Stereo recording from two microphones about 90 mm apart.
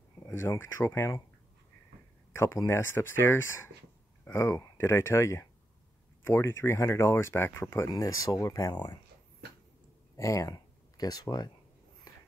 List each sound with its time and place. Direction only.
0.3 s speech: 30° left (ahead or behind)
2.3 s speech: 30° left (ahead or behind)
7.9 s speech: 40° left (ahead or behind)
10.1 s speech: 35° left (ahead or behind)